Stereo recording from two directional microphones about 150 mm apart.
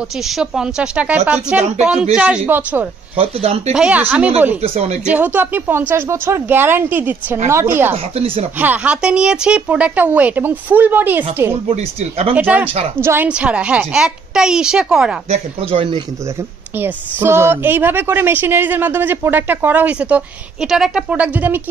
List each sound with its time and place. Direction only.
0.2 s a woman's voice: 5° right (ahead or behind)
3.2 s speech: 40° right (ahead or behind)
3.7 s a woman's voice: 10° right (ahead or behind)
4.6 s speech: 45° right (ahead or behind)
5.0 s a woman's voice: 10° right (ahead or behind)
7.9 s speech: 45° right (ahead or behind)
8.5 s a woman's voice: 10° right (ahead or behind)
11.7 s speech: 45° right (ahead or behind)
12.4 s a woman's voice: 10° right (ahead or behind)
15.2 s speech: 45° right (ahead or behind)
16.7 s a woman's voice: 15° right (ahead or behind)